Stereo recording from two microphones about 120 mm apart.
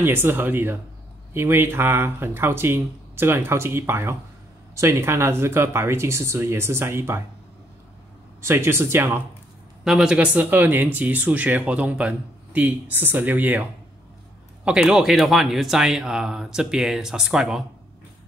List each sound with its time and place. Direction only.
0.0 s speech: 20° right (ahead or behind)
8.4 s speech: 20° right (ahead or behind)
9.8 s speech: 5° right (ahead or behind)